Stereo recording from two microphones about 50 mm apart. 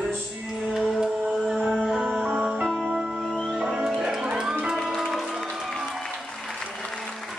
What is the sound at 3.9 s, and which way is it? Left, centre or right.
Music, centre.